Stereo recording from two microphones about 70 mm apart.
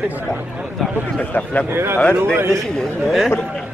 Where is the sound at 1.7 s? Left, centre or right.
Right.